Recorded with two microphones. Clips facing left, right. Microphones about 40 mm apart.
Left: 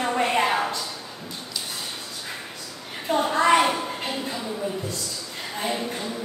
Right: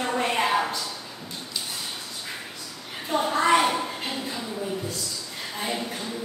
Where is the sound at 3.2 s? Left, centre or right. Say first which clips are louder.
Left 2 dB; centre.